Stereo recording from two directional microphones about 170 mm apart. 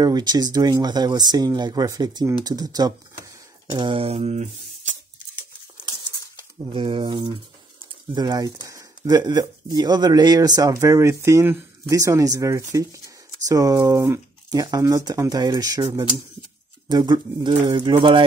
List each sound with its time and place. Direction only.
0.0 s speech: 25° right (ahead or behind)
3.7 s a sound: 30° right (ahead or behind)
6.7 s speech: 30° right (ahead or behind)